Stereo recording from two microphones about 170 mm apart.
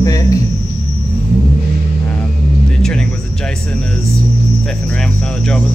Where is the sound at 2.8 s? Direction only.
5° left (ahead or behind).